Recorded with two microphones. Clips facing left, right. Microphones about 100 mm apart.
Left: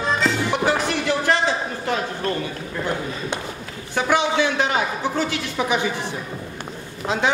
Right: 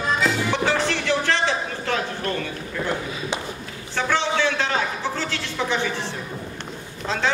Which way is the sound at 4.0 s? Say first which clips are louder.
Left 3 dB; 15° left (ahead or behind).